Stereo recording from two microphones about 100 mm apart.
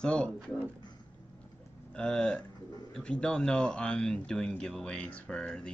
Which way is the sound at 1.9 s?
5° left (ahead or behind).